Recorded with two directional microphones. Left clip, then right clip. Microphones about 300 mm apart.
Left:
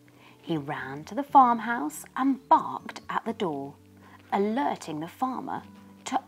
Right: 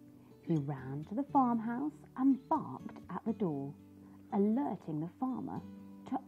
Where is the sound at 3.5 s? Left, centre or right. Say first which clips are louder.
Left 7 dB; left.